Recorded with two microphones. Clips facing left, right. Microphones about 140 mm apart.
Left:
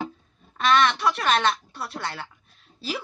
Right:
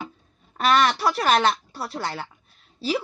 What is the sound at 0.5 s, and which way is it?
Speech, 40° right (ahead or behind).